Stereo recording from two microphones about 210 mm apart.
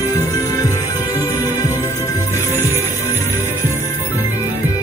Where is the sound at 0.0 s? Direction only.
15° left (ahead or behind).